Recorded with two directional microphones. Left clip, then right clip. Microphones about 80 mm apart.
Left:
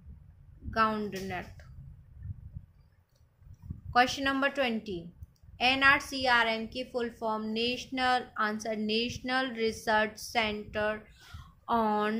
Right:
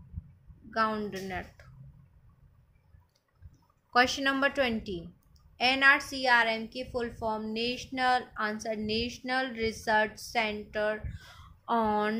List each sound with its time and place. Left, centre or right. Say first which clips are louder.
0.7 s a woman's voice: left 1 dB; centre
1.1 s speech: even; centre
3.9 s a woman's voice: right 1 dB; right
5.6 s a woman's voice: right 1 dB; centre
10.7 s speech: right 1 dB; centre
11.1 s a woman's voice: right 1 dB; centre